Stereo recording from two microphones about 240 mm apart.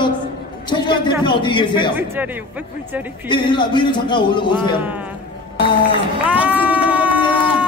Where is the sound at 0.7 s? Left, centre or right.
Centre.